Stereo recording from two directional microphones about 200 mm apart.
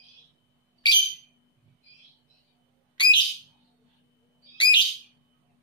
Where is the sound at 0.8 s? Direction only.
20° left (ahead or behind).